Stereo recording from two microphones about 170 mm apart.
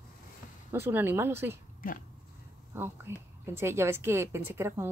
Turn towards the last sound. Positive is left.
turn(degrees=-15)  # may be behind; listen again after turning